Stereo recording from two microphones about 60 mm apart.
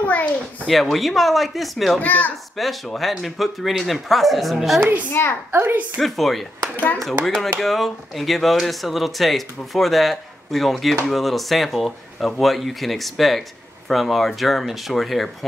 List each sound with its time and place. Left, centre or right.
0.0 s a sound: left
0.7 s speech: centre
2.0 s a child's voice: left
2.5 s speech: centre
5.1 s speech: left
5.5 s a woman's voice: right
5.9 s speech: centre
7.6 s speech: centre